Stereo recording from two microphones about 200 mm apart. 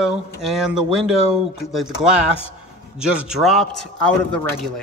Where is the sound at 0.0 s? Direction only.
Centre (ahead or behind).